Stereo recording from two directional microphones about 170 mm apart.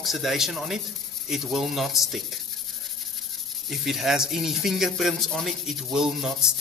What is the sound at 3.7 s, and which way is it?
Speech, centre (ahead or behind).